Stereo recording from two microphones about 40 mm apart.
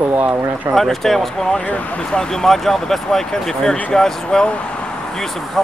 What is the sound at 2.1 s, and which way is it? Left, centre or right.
Speech, centre.